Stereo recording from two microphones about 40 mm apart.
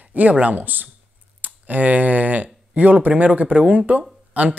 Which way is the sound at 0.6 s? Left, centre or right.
Right.